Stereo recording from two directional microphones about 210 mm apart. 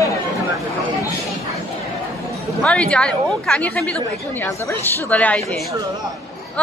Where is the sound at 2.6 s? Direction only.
5° left (ahead or behind).